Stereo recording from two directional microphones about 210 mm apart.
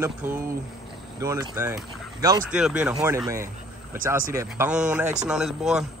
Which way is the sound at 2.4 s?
5° right (ahead or behind).